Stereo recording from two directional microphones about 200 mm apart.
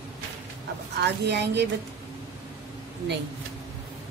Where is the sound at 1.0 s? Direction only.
60° right (ahead or behind).